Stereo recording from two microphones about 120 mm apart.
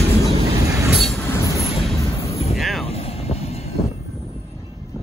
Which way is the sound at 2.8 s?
55° left (ahead or behind).